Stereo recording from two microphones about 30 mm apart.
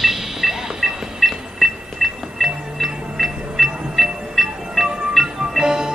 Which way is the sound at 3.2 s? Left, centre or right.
Centre.